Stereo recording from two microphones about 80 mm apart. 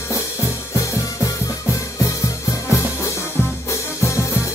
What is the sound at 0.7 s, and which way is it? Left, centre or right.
Music, left.